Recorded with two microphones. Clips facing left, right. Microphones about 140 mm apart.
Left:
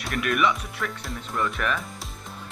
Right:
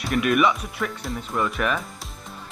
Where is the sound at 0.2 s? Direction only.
20° right (ahead or behind).